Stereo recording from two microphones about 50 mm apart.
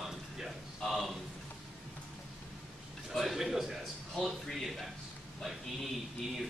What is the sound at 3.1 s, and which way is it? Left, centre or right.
A man's voice, centre.